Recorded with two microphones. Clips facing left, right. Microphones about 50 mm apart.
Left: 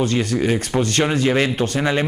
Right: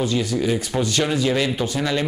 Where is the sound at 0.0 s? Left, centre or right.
Left.